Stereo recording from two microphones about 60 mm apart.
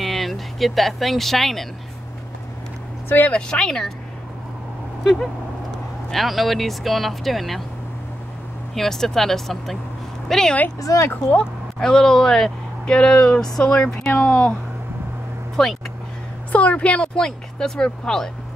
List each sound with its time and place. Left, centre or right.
0.0 s speech: centre
3.3 s speech: centre
6.0 s speech: centre
8.7 s a woman's voice: centre
10.8 s speech: left
11.2 s speech: centre
11.9 s speech: centre
14.1 s speech: left
15.6 s speech: centre
16.5 s speech: left